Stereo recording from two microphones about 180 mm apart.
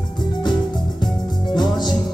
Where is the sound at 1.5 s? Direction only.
25° left (ahead or behind).